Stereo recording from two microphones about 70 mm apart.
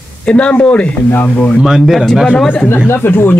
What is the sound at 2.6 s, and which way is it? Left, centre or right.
Speech, left.